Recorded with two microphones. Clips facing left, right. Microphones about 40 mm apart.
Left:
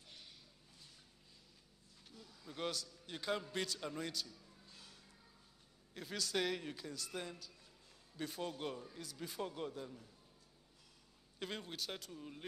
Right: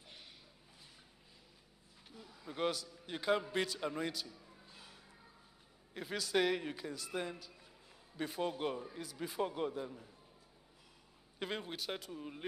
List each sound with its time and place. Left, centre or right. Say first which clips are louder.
2.0 s a man's voice: right 5 dB; centre
11.3 s a man's voice: right 4 dB; centre